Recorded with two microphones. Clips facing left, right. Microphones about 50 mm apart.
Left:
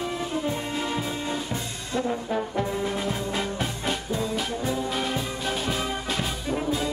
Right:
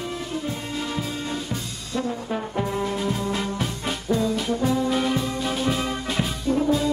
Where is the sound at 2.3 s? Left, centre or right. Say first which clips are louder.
Even; centre.